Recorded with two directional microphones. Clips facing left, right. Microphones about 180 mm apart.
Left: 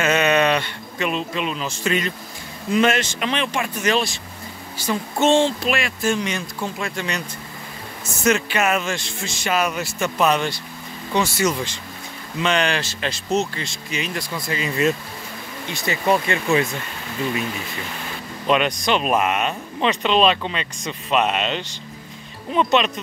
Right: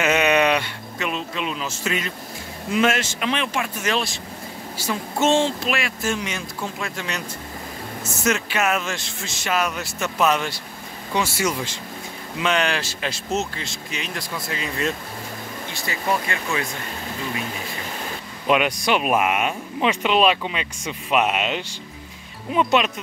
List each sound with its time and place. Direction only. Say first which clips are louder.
0.0 s speech: left 1 dB; 15° right (ahead or behind); by 15.0 s 5° left (ahead or behind)
15.7 s speech: left 5 dB; 20° left (ahead or behind)
18.5 s speech: even; 10° right (ahead or behind)